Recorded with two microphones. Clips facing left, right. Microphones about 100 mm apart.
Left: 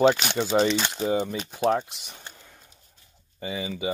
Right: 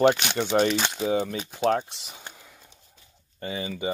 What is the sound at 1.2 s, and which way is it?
Speech, 10° left (ahead or behind).